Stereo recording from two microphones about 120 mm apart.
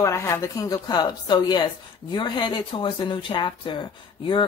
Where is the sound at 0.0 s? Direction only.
25° left (ahead or behind).